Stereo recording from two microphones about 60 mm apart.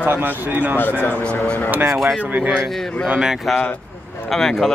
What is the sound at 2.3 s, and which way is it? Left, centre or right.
Speech, right.